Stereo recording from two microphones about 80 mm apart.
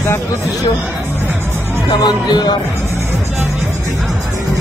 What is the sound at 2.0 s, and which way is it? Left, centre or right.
Speech, left.